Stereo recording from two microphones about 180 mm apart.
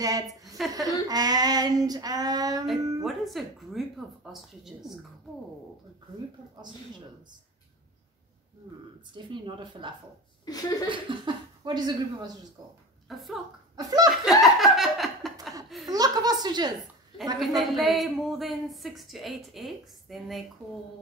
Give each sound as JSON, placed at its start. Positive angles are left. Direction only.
{"t": 0.0, "sound": "female singing", "side_deg": -20}
{"t": 3.0, "sound": "a woman's voice", "side_deg": 0}
{"t": 9.1, "sound": "female singing", "side_deg": -25}
{"t": 10.4, "sound": "speech", "side_deg": 20}
{"t": 10.9, "sound": "speech", "side_deg": -25}
{"t": 13.1, "sound": "a woman's voice", "side_deg": 0}
{"t": 13.7, "sound": "female singing", "side_deg": -20}
{"t": 14.4, "sound": "a woman's voice", "side_deg": 0}
{"t": 15.9, "sound": "female singing", "side_deg": -20}
{"t": 17.4, "sound": "a woman's voice", "side_deg": 0}